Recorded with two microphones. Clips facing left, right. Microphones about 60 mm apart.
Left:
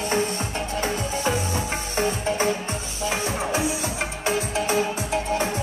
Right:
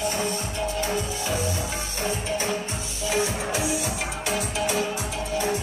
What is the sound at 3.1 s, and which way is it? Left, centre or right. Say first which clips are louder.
Music: even; left.